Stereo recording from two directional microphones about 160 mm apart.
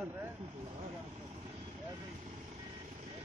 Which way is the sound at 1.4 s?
35° right (ahead or behind).